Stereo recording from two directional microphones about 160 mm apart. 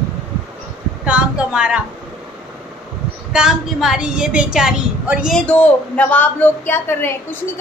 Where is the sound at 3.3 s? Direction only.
5° right (ahead or behind).